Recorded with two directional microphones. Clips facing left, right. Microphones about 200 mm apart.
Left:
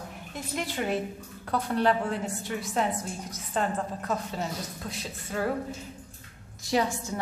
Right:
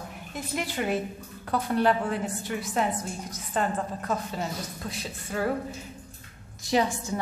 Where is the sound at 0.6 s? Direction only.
5° right (ahead or behind).